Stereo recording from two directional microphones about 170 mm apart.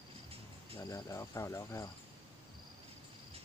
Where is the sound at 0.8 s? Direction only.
20° left (ahead or behind).